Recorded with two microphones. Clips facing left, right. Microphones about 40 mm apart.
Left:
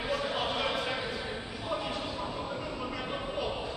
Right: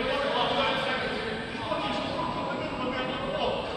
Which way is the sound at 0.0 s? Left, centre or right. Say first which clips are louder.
Right 5 dB; right.